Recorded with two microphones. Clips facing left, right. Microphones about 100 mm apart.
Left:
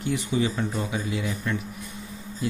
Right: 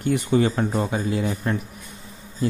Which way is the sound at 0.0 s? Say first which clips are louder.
Right 5 dB; 50° right (ahead or behind).